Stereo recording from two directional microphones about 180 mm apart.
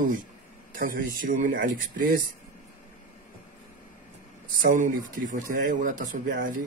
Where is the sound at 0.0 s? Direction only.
50° right (ahead or behind).